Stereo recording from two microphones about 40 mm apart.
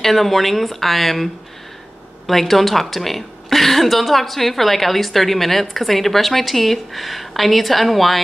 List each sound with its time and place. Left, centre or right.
0.0 s speech: centre